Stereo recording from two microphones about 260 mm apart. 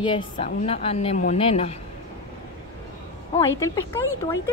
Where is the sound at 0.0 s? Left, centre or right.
Left.